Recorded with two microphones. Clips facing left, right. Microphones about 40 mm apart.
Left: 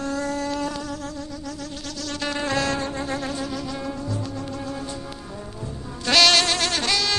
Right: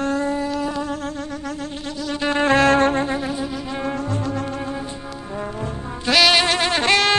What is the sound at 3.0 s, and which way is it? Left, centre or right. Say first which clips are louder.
Shofar: right 4 dB; centre.